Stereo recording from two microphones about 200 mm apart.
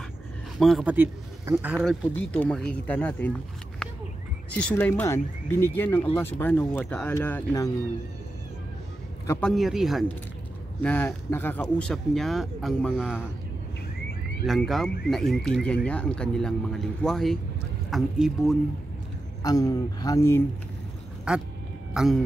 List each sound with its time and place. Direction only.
0.6 s speech: centre (ahead or behind)
2.1 s speech: 5° left (ahead or behind)
4.6 s speech: 5° left (ahead or behind)
9.3 s speech: 5° left (ahead or behind)
14.4 s speech: centre (ahead or behind)
19.4 s speech: 20° left (ahead or behind)
21.3 s speech: 5° right (ahead or behind)